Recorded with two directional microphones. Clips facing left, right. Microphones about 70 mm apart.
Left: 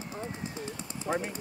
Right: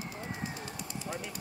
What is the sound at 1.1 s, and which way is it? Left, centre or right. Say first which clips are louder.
Jackhammer: left 10 dB; left.